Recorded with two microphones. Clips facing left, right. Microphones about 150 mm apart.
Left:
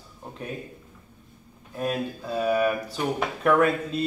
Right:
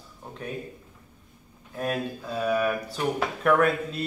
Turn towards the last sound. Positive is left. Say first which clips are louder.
# left 1 dB
turn(degrees=0)  # may be behind; listen again after turning